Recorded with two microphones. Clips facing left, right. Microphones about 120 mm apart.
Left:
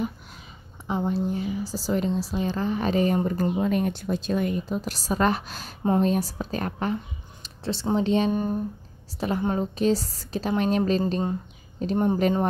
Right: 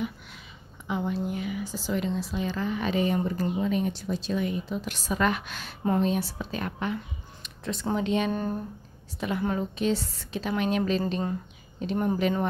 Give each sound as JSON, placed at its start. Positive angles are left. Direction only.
{"t": 0.8, "sound": "a woman's voice", "side_deg": 35}
{"t": 3.6, "sound": "a woman's voice", "side_deg": 55}
{"t": 7.4, "sound": "a sound", "side_deg": 30}
{"t": 7.9, "sound": "a woman's voice", "side_deg": 30}
{"t": 8.3, "sound": "speech", "side_deg": 15}
{"t": 9.4, "sound": "a woman's voice", "side_deg": 30}